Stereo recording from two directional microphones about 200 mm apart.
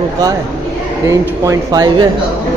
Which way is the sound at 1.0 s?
15° right (ahead or behind).